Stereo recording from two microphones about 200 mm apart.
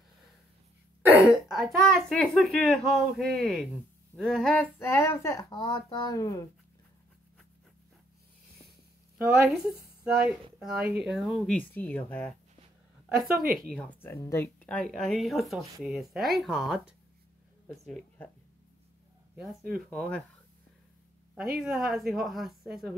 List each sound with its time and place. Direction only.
1.2 s a child's voice: centre (ahead or behind); by 6.4 s 15° left (ahead or behind)
9.2 s a child's voice: 5° right (ahead or behind)
13.7 s a child's voice: 10° left (ahead or behind)
19.9 s a child's voice: 5° left (ahead or behind)
21.4 s a child's voice: centre (ahead or behind)